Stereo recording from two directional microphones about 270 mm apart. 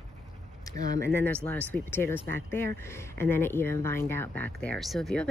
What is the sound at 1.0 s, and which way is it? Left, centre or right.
Speech, centre.